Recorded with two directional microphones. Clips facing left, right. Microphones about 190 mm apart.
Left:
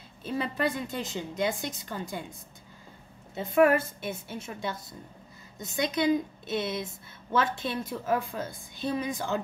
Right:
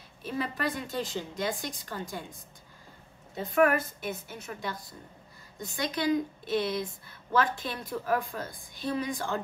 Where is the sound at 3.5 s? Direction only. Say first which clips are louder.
Left 3 dB; 25° left (ahead or behind).